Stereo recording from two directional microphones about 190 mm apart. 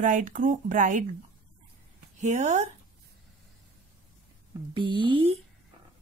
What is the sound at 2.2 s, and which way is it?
Speech, 40° right (ahead or behind).